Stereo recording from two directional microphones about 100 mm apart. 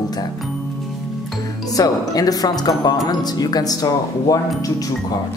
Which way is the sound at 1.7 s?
40° left (ahead or behind).